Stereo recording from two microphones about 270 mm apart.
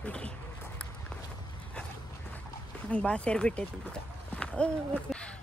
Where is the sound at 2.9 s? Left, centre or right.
Centre.